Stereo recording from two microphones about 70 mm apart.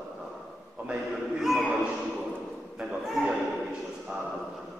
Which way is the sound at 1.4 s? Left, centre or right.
Centre.